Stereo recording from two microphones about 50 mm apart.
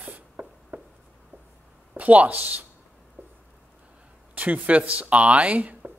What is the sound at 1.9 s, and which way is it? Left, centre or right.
Speech, right.